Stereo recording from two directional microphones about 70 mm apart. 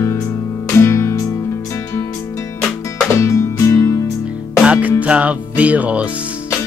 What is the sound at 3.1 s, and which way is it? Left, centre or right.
Music, left.